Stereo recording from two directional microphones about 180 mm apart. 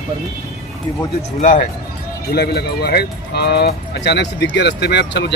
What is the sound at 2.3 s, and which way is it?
Speech, 60° left (ahead or behind).